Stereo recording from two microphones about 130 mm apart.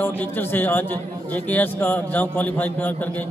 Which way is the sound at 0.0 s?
15° left (ahead or behind).